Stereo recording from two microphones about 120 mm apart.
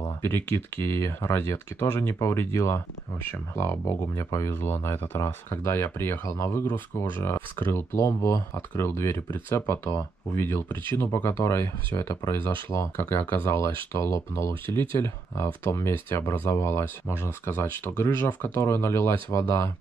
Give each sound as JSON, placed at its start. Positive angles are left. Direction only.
{"t": 0.2, "sound": "speech", "side_deg": 20}